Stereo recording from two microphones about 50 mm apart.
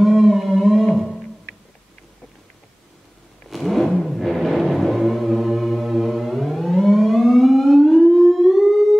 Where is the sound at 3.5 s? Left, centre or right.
Centre.